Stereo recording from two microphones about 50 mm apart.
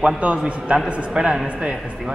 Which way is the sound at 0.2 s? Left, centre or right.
Right.